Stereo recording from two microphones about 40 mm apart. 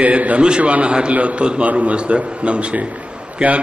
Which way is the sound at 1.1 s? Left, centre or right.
Right.